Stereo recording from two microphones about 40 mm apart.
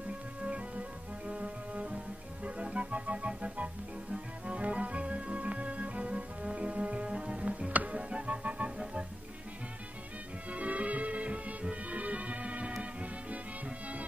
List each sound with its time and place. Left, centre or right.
0.4 s music: right
10.5 s music: right